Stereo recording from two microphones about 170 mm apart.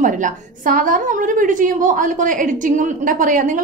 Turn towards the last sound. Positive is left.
turn(degrees=-50)  # may be behind; listen again after turning